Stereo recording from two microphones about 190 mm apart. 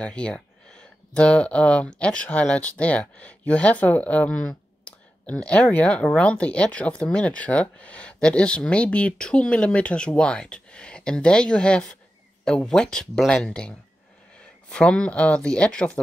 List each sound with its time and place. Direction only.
0.0 s speech: 5° left (ahead or behind)